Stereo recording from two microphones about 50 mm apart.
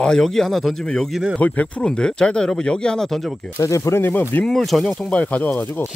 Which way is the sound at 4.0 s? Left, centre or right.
Left.